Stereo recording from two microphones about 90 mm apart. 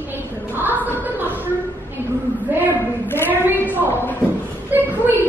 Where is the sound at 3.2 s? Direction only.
20° right (ahead or behind).